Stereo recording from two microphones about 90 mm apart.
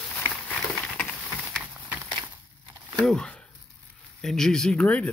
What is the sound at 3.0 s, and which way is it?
Speech, 5° left (ahead or behind).